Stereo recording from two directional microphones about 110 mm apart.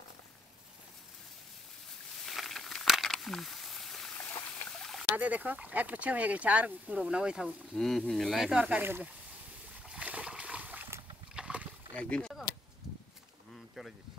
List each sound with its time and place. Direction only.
2.2 s a sound: centre (ahead or behind)
5.1 s speech: 15° right (ahead or behind)
8.8 s speech: 20° right (ahead or behind)
9.8 s boat: 10° right (ahead or behind)
11.9 s speech: 10° left (ahead or behind)
13.8 s speech: centre (ahead or behind)